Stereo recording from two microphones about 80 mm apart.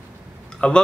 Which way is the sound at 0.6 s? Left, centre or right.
Centre.